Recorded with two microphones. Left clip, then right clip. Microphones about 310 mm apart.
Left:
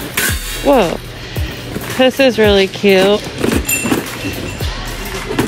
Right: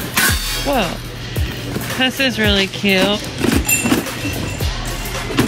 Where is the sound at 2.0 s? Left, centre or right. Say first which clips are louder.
Left 7 dB; centre.